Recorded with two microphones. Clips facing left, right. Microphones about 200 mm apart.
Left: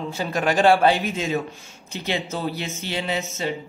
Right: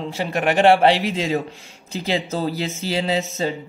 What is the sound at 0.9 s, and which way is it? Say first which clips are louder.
Speech: right 3 dB; 90° right.